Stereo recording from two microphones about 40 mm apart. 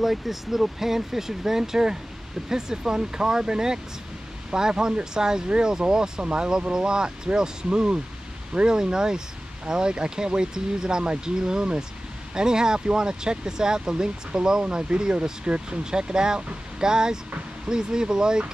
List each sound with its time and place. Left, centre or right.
0.0 s speech: centre